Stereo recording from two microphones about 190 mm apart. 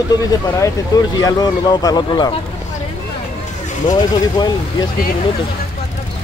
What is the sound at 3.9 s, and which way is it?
Speech, 20° left (ahead or behind).